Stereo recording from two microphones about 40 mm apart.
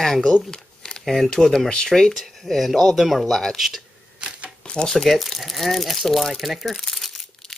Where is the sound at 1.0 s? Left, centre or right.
Centre.